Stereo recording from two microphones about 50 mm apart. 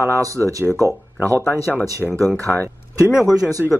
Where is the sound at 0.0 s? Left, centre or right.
Left.